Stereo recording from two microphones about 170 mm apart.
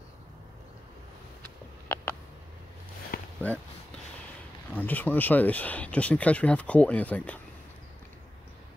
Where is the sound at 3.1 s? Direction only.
60° left (ahead or behind).